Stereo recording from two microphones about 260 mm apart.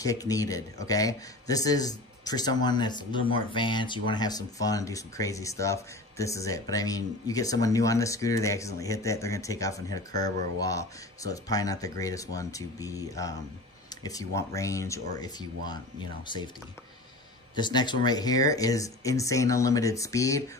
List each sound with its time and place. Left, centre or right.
0.0 s a man's voice: centre
17.6 s a man's voice: centre